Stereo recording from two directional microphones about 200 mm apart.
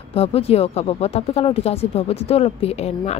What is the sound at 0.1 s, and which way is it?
Speech, 30° left (ahead or behind).